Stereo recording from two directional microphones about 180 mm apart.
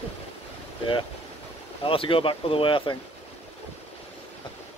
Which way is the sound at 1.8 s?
30° left (ahead or behind).